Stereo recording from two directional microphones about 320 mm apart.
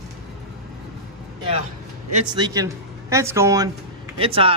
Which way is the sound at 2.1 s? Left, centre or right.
Centre.